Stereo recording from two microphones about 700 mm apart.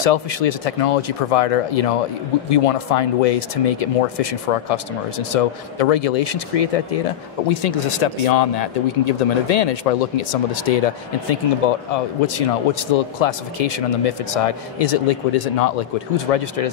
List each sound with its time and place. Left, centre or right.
0.0 s speech: left